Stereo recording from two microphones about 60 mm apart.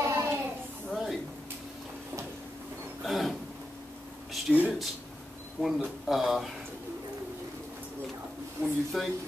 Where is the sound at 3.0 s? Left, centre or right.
Centre.